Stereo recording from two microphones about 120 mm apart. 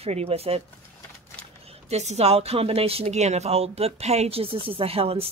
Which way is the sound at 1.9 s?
65° right (ahead or behind).